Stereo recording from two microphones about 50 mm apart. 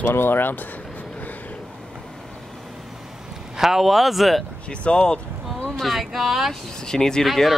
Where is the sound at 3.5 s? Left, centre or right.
Centre.